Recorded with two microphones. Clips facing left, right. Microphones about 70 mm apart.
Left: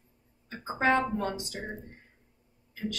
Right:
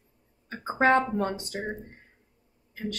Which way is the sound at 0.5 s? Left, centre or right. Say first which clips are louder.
Right 4 dB; right.